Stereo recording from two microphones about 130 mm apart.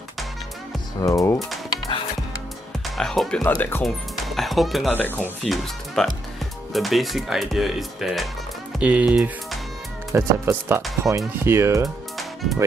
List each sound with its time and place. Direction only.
1.0 s speech: 25° left (ahead or behind)
3.0 s speech: 5° left (ahead or behind)
3.4 s speech: 15° left (ahead or behind)
3.8 s speech: centre (ahead or behind)
4.9 s speech: 15° left (ahead or behind)
5.4 s speech: centre (ahead or behind)
10.1 s speech: 20° right (ahead or behind)